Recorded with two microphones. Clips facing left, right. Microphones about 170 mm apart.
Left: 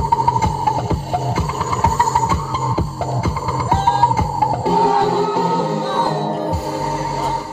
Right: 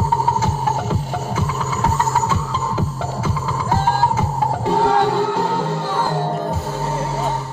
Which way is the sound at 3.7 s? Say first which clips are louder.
Left 2 dB; 25° left (ahead or behind).